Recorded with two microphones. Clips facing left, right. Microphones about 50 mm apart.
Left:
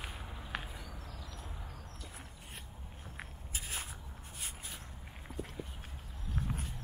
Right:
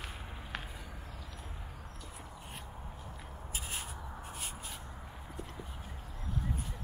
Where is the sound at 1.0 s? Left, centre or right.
Centre.